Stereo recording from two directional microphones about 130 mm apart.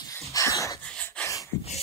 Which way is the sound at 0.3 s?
25° left (ahead or behind).